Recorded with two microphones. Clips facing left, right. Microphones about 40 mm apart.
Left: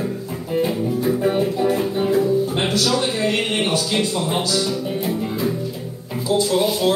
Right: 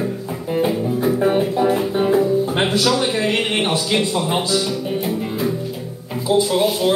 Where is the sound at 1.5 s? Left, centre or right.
Right.